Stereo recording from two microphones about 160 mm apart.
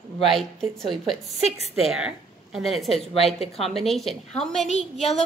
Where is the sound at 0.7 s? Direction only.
Centre (ahead or behind).